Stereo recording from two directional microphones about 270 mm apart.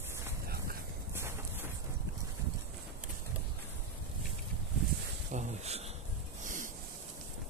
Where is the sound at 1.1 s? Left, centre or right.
Centre.